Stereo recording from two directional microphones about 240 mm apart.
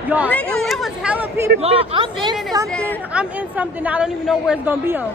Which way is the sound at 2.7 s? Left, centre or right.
Centre.